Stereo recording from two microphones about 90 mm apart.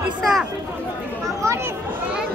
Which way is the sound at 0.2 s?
Centre (ahead or behind).